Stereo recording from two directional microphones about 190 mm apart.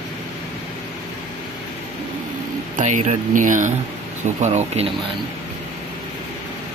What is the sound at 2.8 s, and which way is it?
Speech, 40° right (ahead or behind).